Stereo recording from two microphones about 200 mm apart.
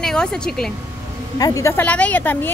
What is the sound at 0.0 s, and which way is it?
Speech, 5° left (ahead or behind).